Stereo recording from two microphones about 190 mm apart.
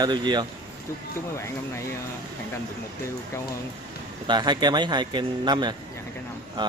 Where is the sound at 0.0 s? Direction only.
25° right (ahead or behind).